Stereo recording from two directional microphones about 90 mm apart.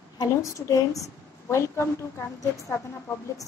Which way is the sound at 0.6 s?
40° left (ahead or behind).